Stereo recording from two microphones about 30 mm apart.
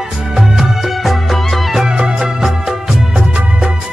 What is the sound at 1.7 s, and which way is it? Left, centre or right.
Music, right.